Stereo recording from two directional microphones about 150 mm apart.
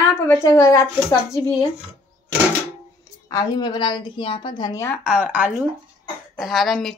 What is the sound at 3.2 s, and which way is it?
A woman's voice, 25° left (ahead or behind).